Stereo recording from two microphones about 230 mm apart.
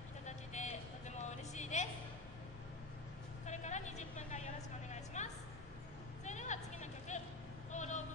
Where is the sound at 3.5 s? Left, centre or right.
Left.